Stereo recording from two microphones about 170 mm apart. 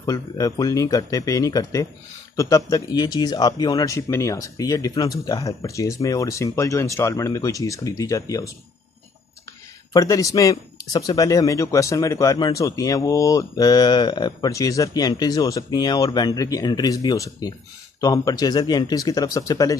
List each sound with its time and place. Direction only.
0.0 s speech: 20° left (ahead or behind)
9.9 s speech: 20° left (ahead or behind)